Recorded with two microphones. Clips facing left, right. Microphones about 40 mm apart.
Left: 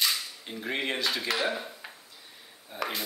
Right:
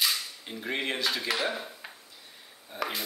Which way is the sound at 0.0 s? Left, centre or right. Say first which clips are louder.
Even; centre.